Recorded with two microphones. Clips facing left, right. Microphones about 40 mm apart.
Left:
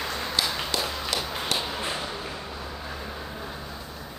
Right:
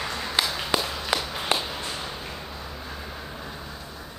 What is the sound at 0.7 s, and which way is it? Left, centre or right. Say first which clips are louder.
Walk: right 5 dB; right.